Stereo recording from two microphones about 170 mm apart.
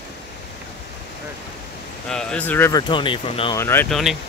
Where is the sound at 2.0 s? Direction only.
5° left (ahead or behind).